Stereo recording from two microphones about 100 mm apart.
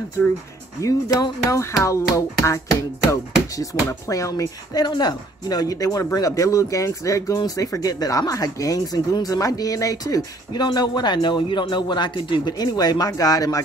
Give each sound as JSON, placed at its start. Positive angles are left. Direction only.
{"t": 0.8, "sound": "speech", "side_deg": 30}